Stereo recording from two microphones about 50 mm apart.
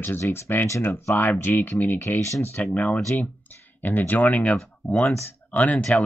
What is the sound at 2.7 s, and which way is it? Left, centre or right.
Speech, left.